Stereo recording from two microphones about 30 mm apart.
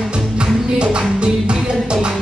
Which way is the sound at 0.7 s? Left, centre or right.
Right.